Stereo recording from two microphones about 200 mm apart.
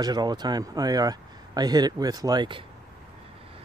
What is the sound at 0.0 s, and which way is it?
Speech, 20° right (ahead or behind).